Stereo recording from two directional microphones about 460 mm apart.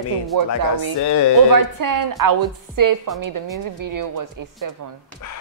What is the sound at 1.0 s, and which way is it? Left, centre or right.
Speech, left.